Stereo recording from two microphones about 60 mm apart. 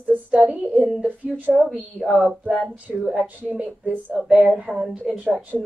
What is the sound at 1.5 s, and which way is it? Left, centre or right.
Speech, centre.